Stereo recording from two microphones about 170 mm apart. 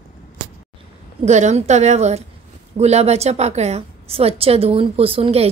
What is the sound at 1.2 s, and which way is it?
Speech, 40° right (ahead or behind).